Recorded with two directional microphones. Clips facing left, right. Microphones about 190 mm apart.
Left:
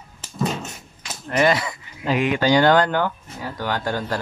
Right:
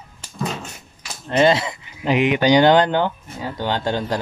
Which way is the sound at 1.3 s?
25° right (ahead or behind).